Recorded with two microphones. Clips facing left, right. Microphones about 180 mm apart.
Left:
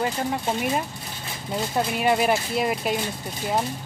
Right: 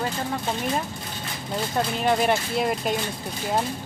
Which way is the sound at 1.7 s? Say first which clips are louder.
Left 1 dB; 5° left (ahead or behind).